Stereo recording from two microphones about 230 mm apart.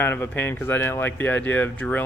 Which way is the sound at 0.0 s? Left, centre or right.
Centre.